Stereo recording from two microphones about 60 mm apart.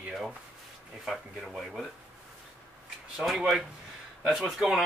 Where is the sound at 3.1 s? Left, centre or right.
Centre.